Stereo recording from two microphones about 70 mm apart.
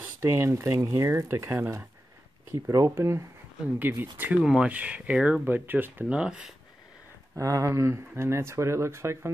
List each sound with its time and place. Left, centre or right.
0.2 s speech: right
2.5 s speech: right
4.0 s speech: right
4.4 s speech: centre
4.6 s speech: centre
5.4 s speech: right
6.0 s speech: centre
7.3 s speech: right